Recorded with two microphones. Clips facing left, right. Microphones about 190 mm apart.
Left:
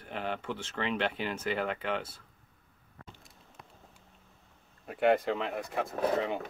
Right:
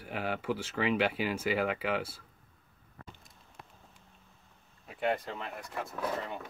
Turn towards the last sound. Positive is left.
turn(degrees=55)  # may be behind; listen again after turning